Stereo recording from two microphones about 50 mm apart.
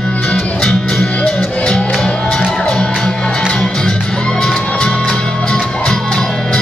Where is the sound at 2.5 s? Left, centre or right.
Centre.